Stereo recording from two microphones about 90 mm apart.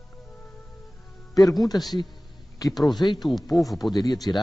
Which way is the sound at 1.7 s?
50° left (ahead or behind).